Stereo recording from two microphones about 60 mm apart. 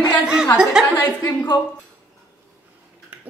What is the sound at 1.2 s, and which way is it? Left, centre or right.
Speech, left.